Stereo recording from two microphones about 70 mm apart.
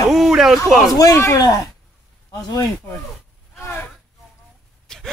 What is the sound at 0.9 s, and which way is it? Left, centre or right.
Speech, left.